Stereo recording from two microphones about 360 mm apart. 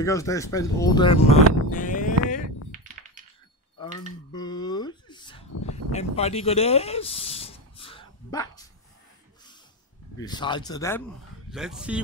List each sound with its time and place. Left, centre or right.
0.0 s speech: centre
3.8 s a sound: centre
10.2 s speech: centre
11.5 s speech: centre